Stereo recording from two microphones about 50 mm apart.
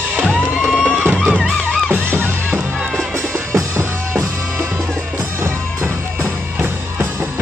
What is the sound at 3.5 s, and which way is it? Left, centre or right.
Music, right.